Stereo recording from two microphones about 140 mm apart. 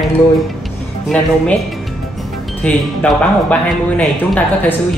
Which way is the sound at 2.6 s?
10° left (ahead or behind).